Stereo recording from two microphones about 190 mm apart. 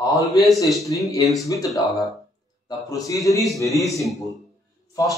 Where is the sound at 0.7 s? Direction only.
15° left (ahead or behind).